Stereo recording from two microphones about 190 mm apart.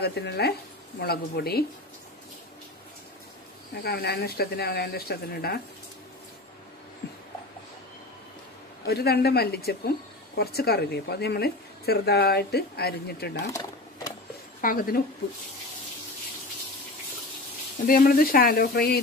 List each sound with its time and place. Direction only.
0.0 s speech: 60° left (ahead or behind)
3.8 s speech: 55° left (ahead or behind)
7.0 s a sound: 55° left (ahead or behind)
8.8 s speech: 55° left (ahead or behind)
13.5 s sewing machine: 20° left (ahead or behind)
14.6 s speech: 50° left (ahead or behind)
17.8 s speech: 50° left (ahead or behind)